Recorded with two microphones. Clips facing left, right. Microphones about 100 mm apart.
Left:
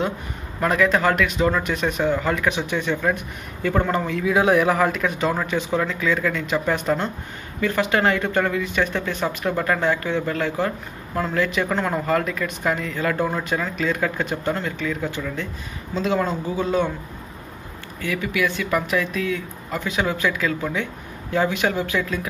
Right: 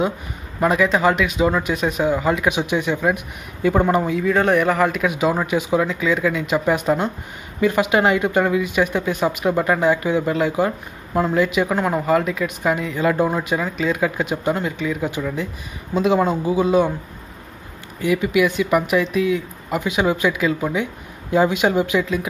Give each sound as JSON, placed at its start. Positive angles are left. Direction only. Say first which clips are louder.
{"t": 0.6, "sound": "speech", "louder": "right 2 dB", "side_deg": -5}
{"t": 4.2, "sound": "speech", "louder": "right 1 dB", "side_deg": 5}
{"t": 18.0, "sound": "speech", "louder": "right 6 dB", "side_deg": -20}